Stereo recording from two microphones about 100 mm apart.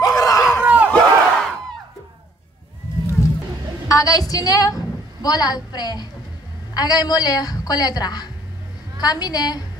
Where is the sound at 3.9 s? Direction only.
35° left (ahead or behind).